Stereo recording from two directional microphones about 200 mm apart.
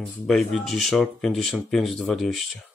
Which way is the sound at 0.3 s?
Centre (ahead or behind).